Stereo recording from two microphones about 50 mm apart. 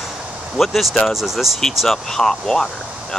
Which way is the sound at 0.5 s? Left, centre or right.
Centre.